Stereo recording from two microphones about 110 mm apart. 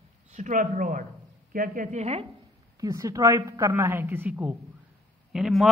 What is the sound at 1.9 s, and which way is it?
Speech, 80° right.